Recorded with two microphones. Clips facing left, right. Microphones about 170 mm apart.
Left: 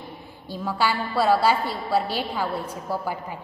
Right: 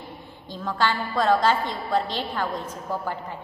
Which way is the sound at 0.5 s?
10° left (ahead or behind).